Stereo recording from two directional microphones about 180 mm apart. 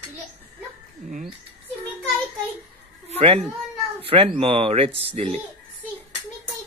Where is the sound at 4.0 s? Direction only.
30° right (ahead or behind).